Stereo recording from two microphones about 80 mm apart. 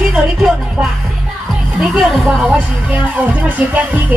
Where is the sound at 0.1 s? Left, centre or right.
Centre.